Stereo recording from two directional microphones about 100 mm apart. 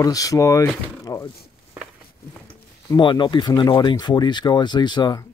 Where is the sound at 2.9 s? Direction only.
50° left (ahead or behind).